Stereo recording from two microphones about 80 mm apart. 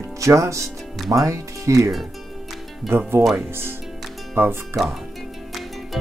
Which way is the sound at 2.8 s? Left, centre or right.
Right.